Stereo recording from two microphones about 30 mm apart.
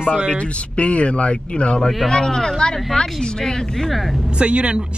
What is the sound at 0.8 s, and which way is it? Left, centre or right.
Speech, left.